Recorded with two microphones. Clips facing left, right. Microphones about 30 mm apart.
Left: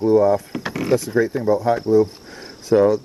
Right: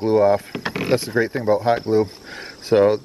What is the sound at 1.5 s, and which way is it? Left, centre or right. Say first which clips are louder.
Speech: even; right.